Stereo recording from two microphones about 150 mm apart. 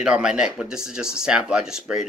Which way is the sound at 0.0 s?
5° right (ahead or behind).